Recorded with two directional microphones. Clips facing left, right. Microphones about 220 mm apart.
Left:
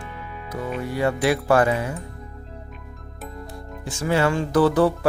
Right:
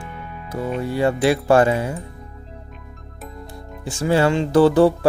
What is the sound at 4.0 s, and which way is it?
Speech, 30° right (ahead or behind).